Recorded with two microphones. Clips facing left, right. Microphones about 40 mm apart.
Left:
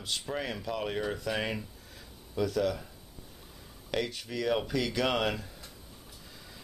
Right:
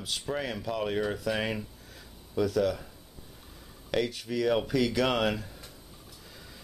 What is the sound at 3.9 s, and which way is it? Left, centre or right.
Speech, centre.